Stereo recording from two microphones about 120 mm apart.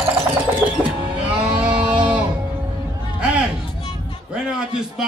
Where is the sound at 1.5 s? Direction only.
40° right (ahead or behind).